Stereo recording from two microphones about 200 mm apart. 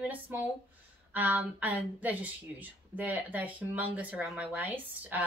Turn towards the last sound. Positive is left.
turn(degrees=-10)  # may be behind; listen again after turning